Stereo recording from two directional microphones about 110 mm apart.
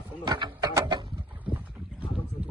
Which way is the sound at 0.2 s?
40° right (ahead or behind).